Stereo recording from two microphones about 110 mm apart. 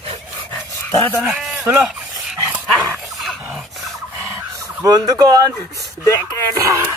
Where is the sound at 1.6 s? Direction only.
20° right (ahead or behind).